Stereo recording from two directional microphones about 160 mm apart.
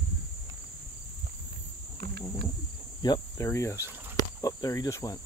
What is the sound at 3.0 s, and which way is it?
Cricket, 20° left (ahead or behind).